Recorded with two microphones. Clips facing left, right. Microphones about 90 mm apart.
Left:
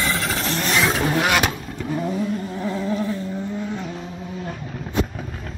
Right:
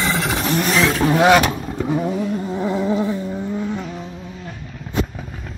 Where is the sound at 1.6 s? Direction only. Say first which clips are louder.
Right 5 dB; 20° right (ahead or behind).